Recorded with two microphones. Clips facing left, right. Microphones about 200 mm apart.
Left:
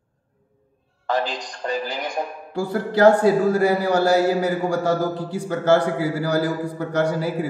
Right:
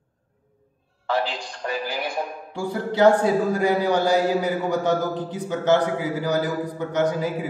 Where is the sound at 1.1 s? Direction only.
15° left (ahead or behind).